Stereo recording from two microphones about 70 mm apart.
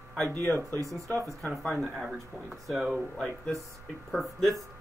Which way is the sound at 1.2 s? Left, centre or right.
Centre.